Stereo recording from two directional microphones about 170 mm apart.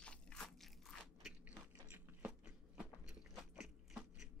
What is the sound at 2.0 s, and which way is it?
Biting, 10° right (ahead or behind).